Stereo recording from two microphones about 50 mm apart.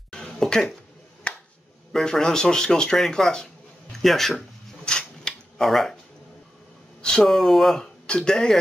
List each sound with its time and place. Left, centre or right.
0.5 s speech: centre
1.3 s finger snapping: left
1.9 s speech: centre
4.8 s a sound: centre
5.6 s speech: centre
7.0 s speech: centre
7.8 s speech: centre